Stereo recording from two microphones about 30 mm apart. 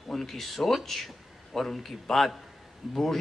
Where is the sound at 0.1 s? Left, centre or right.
Centre.